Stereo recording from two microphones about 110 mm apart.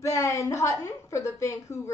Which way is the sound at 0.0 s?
30° left (ahead or behind).